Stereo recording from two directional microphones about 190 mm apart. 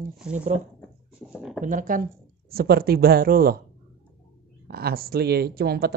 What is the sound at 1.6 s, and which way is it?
Speech, 45° right (ahead or behind).